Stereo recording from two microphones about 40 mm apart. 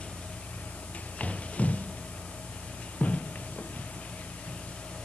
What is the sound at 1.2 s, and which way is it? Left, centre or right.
Music, left.